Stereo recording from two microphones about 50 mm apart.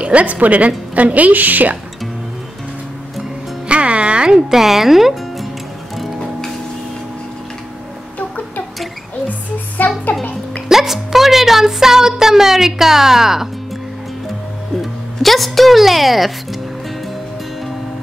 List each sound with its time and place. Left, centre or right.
0.0 s a woman's voice: right
3.6 s music: right
4.5 s speech: centre
9.8 s music: left
10.7 s speech: centre
14.8 s speech: centre